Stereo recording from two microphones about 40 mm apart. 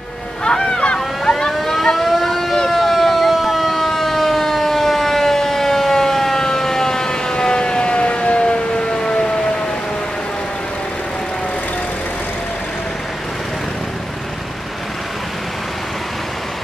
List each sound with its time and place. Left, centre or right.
0.4 s goose: left
0.9 s vehicle: centre
2.7 s siren: centre